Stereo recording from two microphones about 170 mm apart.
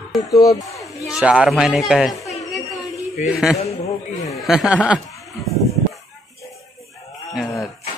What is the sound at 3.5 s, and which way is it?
Speech, 40° left (ahead or behind).